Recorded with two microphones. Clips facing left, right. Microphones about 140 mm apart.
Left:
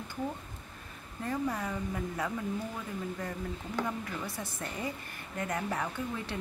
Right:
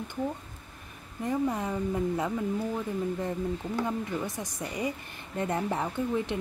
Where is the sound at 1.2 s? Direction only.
20° right (ahead or behind).